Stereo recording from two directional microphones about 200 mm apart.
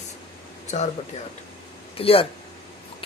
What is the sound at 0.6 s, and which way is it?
Speech, 35° left (ahead or behind).